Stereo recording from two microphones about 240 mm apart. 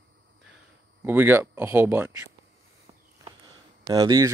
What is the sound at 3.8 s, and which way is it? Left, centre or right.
Speech, centre.